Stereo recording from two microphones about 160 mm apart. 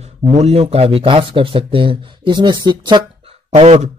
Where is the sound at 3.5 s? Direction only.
40° right (ahead or behind).